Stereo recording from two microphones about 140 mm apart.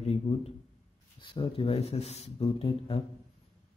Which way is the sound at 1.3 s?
35° left (ahead or behind).